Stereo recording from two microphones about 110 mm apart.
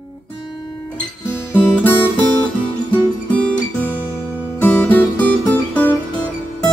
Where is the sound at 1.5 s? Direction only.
15° left (ahead or behind).